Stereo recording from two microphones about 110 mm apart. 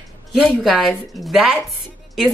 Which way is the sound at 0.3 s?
5° left (ahead or behind).